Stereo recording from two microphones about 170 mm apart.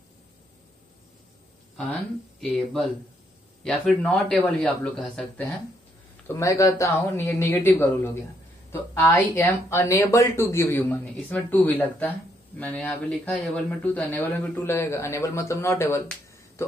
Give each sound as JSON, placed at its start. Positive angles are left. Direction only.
{"t": 3.6, "sound": "a man's voice", "side_deg": 0}
{"t": 6.2, "sound": "a man's voice", "side_deg": 20}